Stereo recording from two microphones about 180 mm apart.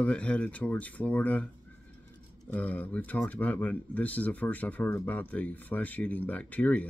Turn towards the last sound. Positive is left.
turn(degrees=5)  # may be behind; listen again after turning